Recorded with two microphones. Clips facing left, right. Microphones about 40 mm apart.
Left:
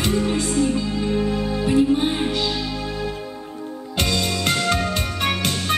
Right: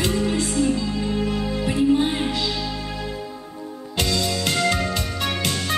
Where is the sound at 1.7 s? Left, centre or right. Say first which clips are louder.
Left 1 dB; left.